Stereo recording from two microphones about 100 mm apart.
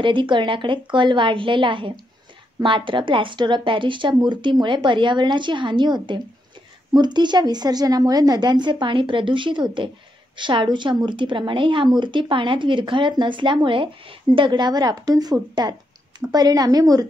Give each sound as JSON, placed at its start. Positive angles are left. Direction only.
{"t": 0.0, "sound": "a woman's voice", "side_deg": -55}